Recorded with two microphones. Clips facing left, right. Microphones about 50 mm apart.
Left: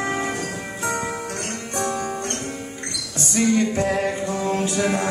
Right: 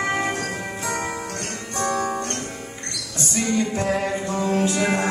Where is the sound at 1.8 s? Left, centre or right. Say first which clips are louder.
Right 3 dB; right.